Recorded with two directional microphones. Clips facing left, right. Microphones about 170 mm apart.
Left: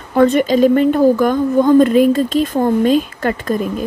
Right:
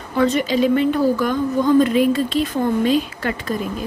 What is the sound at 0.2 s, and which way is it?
A woman's voice, 50° left (ahead or behind).